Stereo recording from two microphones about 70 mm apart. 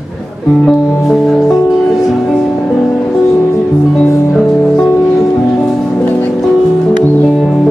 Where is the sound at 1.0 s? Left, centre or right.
Centre.